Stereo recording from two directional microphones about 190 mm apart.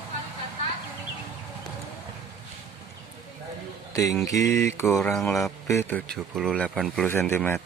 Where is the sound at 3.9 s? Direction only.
15° left (ahead or behind).